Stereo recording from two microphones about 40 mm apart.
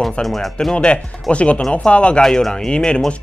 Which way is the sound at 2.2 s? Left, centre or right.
Centre.